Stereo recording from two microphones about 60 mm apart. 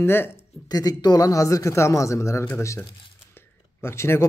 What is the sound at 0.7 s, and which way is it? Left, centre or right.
A man's voice, left.